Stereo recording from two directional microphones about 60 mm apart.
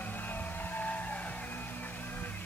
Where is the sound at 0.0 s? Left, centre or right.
Left.